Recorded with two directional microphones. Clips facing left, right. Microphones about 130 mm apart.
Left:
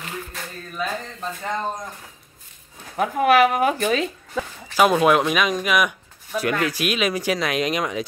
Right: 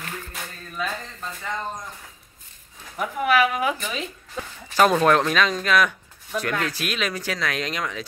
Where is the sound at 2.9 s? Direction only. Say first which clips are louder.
Left 4 dB; 60° left (ahead or behind).